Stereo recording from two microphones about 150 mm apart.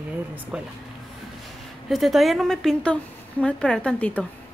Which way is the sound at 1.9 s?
Centre (ahead or behind).